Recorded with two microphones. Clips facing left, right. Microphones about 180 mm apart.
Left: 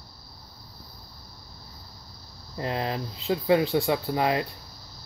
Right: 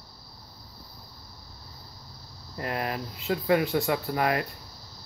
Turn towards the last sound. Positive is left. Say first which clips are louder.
# left 1 dB
turn(degrees=20)  # may be behind; listen again after turning